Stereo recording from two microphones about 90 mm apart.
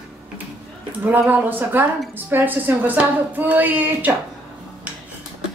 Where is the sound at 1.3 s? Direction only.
20° right (ahead or behind).